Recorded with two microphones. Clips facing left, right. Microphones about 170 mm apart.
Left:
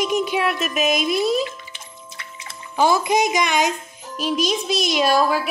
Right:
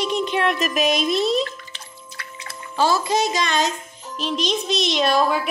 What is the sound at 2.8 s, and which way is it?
A woman's voice, 15° left (ahead or behind).